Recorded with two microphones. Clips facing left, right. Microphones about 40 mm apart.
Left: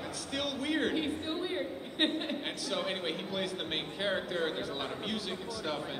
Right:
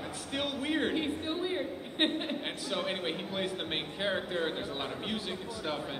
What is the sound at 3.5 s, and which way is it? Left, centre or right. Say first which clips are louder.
Speech: right 1 dB; centre.